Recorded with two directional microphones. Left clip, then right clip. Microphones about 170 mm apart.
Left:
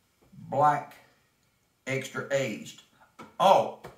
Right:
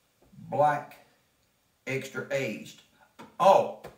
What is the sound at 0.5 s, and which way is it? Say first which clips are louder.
Speech: left 1 dB; 5° left (ahead or behind).